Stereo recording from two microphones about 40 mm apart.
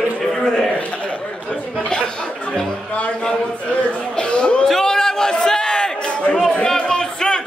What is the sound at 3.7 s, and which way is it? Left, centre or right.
Speech, left.